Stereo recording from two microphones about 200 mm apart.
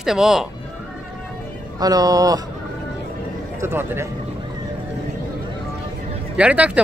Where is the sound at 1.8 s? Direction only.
20° right (ahead or behind).